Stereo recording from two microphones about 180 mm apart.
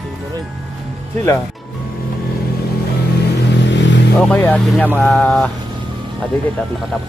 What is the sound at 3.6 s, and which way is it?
Vehicle, 80° left.